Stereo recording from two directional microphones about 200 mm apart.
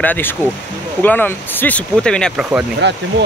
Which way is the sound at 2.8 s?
60° right (ahead or behind).